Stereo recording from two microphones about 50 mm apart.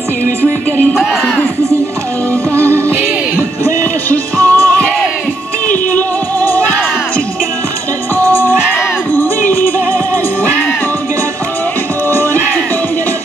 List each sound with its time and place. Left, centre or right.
4.1 s music: left
5.9 s music: left
8.3 s music: left
12.1 s music: left